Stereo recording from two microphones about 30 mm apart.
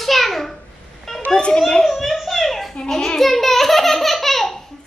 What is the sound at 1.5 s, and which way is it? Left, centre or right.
Speech, left.